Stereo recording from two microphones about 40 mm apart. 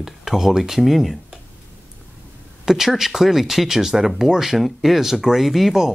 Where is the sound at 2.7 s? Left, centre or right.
Centre.